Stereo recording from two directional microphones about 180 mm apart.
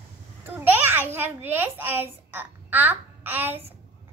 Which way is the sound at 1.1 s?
10° right (ahead or behind).